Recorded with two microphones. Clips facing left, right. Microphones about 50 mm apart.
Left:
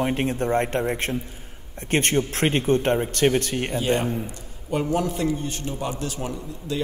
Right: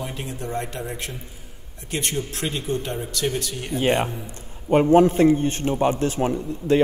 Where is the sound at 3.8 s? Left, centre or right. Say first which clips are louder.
Right 5 dB; right.